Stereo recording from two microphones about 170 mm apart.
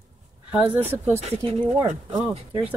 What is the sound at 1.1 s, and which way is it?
Speech, 35° right (ahead or behind).